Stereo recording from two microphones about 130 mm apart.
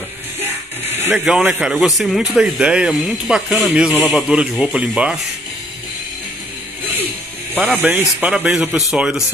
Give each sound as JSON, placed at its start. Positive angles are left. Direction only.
{"t": 0.4, "sound": "music", "side_deg": -15}
{"t": 1.1, "sound": "speech", "side_deg": -5}
{"t": 7.6, "sound": "speech", "side_deg": -15}